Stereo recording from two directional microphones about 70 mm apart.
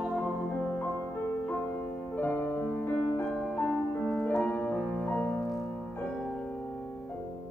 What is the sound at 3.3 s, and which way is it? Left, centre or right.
Music, centre.